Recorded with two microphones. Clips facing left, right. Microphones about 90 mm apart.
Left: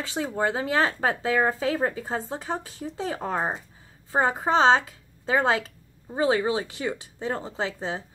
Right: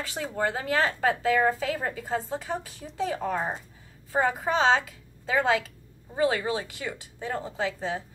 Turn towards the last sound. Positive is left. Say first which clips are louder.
# even
turn(degrees=25)  # may be behind; listen again after turning